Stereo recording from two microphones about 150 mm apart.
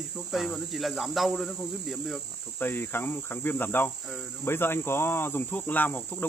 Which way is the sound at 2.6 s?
15° left (ahead or behind).